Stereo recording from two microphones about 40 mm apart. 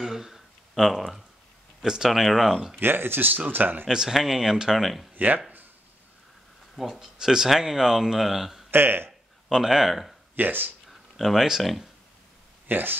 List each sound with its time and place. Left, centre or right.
0.0 s a sound: centre
1.8 s speech: centre
2.8 s speech: right
3.3 s speech: right
3.9 s speech: centre
5.1 s speech: right
6.9 s speech: centre
8.6 s speech: right
9.5 s speech: centre
10.3 s speech: right
10.9 s a sound: centre
12.6 s speech: right